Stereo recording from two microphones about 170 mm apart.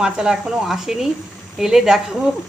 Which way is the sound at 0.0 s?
5° right (ahead or behind).